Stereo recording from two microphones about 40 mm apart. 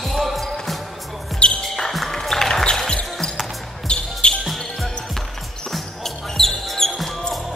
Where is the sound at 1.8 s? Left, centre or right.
Centre; by 4.4 s left.